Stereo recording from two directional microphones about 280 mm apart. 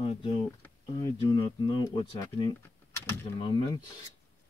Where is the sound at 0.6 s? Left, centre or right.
Centre.